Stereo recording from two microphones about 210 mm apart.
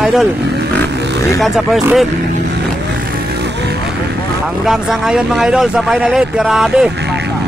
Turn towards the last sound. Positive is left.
turn(degrees=0)  # may be behind; listen again after turning